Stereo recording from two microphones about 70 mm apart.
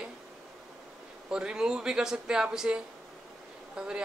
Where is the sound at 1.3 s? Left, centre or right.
Centre.